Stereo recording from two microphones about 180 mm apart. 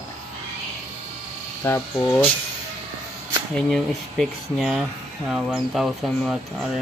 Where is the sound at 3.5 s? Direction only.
5° left (ahead or behind).